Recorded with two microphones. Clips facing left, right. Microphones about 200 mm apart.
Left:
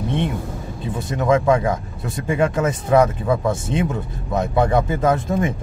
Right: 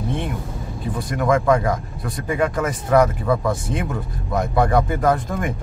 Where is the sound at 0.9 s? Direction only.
25° left (ahead or behind).